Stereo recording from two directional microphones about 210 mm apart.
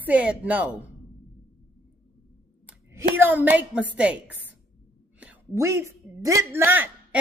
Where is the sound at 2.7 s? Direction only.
10° right (ahead or behind).